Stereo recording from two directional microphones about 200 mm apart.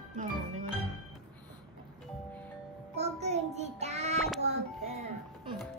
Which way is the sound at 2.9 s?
35° right (ahead or behind).